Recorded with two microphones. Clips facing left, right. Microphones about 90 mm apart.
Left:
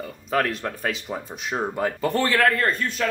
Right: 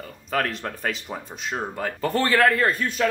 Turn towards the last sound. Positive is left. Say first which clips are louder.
# right 2 dB
turn(degrees=-5)  # may be behind; listen again after turning